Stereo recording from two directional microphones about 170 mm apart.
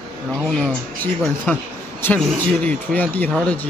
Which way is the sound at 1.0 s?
10° left (ahead or behind).